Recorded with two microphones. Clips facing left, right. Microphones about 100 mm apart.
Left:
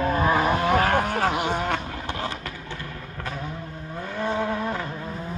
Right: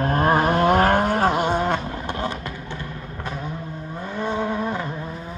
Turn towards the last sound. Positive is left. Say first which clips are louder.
# right 2 dB
turn(degrees=-20)  # may be behind; listen again after turning